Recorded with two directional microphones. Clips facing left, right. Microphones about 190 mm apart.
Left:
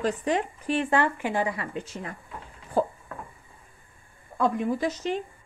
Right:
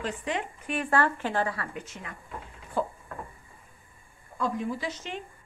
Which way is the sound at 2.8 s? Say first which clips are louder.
Left 5 dB; 40° left (ahead or behind).